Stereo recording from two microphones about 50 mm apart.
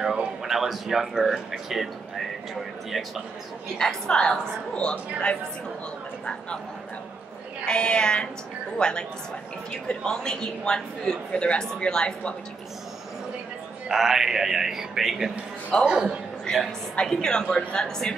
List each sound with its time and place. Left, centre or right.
0.0 s speech: centre
3.7 s a woman's voice: centre
7.6 s a woman's voice: centre
13.8 s a man's voice: centre
15.8 s a man's voice: centre
17.1 s a woman's voice: centre